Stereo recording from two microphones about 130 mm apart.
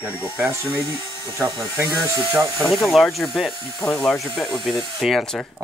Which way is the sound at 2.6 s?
Centre (ahead or behind).